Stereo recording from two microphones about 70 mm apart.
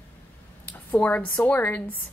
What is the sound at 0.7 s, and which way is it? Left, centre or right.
A woman's voice, left.